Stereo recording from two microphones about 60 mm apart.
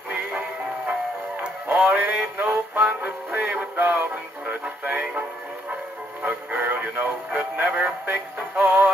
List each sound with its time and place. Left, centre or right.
0.1 s music: right
6.2 s music: right
8.1 s synthetic singing: right